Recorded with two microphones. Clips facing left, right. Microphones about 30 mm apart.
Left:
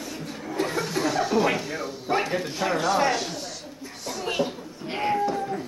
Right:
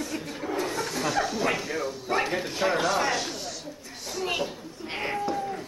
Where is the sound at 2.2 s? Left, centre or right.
Centre.